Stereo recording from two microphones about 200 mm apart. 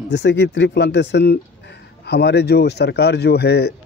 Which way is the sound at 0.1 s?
60° left (ahead or behind).